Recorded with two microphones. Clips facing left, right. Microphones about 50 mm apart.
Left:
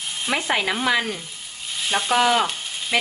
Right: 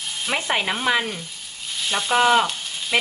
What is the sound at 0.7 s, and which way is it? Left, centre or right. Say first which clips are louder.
Speech: right 1 dB; centre.